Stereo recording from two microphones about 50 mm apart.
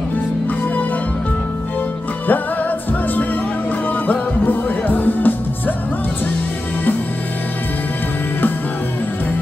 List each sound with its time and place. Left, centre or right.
3.9 s music: left